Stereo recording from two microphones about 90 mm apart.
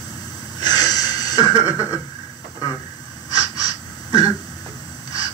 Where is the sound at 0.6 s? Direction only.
45° left (ahead or behind).